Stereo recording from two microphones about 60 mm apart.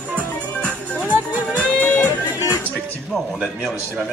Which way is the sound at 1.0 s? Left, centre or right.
Right.